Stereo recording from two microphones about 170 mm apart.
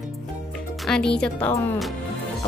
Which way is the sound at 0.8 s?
5° left (ahead or behind).